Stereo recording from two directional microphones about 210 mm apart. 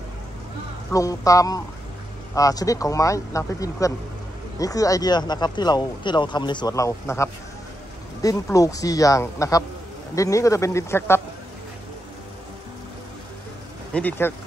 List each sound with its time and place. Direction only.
0.9 s speech: 15° left (ahead or behind)
13.9 s speech: 10° left (ahead or behind)